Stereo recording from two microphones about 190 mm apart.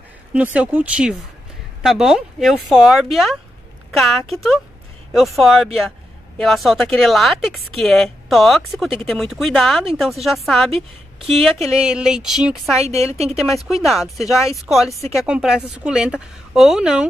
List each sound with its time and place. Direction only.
0.3 s a woman's voice: 10° right (ahead or behind)
10.7 s a woman's voice: 30° right (ahead or behind)
11.6 s a woman's voice: 5° right (ahead or behind)
12.8 s a woman's voice: 35° right (ahead or behind)
13.4 s a woman's voice: centre (ahead or behind)